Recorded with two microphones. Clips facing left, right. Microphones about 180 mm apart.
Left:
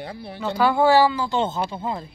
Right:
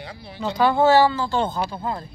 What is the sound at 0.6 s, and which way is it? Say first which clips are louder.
A woman's voice: right 1 dB; 10° left (ahead or behind).